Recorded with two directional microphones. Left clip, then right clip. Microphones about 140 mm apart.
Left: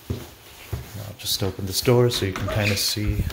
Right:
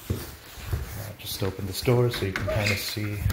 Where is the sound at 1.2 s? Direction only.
40° left (ahead or behind).